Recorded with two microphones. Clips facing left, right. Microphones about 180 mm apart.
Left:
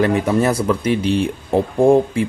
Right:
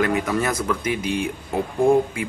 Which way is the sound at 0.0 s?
30° left (ahead or behind).